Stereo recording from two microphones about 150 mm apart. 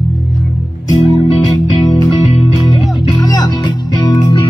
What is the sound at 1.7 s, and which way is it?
Music, 25° left (ahead or behind).